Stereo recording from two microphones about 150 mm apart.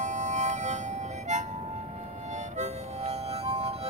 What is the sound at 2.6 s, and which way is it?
Music, 45° right (ahead or behind).